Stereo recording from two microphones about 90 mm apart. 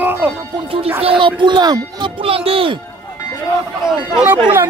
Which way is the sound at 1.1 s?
65° right (ahead or behind).